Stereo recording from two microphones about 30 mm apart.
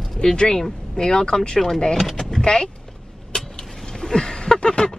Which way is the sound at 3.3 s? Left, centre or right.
Left.